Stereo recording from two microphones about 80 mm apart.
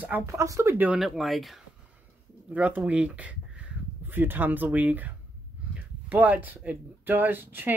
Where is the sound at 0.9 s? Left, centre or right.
Centre.